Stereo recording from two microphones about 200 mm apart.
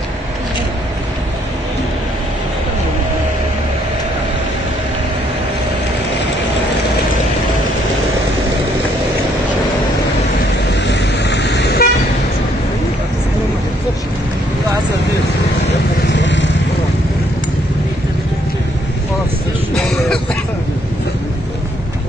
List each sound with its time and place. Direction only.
10.8 s vehicle: 60° left (ahead or behind)
16.1 s vehicle: 65° left (ahead or behind)
19.7 s cough: 5° left (ahead or behind)